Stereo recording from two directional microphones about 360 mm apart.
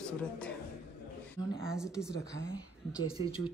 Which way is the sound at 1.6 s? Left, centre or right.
Centre.